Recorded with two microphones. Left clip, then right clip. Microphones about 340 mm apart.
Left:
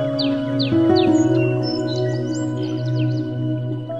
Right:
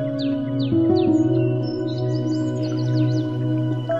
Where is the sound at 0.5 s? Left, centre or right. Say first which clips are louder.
Left 3 dB; left.